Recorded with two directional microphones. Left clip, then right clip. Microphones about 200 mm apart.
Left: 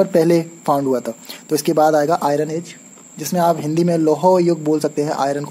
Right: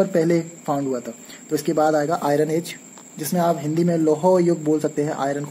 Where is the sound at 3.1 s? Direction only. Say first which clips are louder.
Left 4 dB; 20° left (ahead or behind).